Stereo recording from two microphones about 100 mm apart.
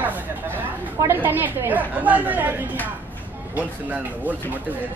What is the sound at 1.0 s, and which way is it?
Speech, 20° right (ahead or behind).